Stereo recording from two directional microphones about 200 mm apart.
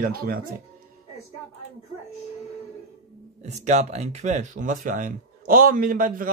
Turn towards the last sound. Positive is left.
turn(degrees=-45)  # may be behind; listen again after turning